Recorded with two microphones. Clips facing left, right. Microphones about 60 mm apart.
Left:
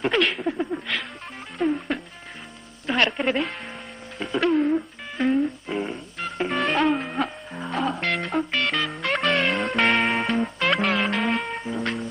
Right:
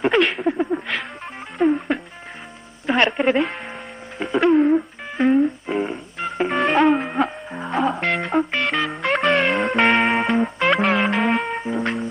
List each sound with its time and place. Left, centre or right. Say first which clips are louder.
0.0 s a sound: right 4 dB; centre
1.6 s music: right 5 dB; centre
4.2 s a sound: right 5 dB; centre
5.8 s music: right 4 dB; centre
8.4 s music: right 5 dB; right
8.9 s music: right 6 dB; centre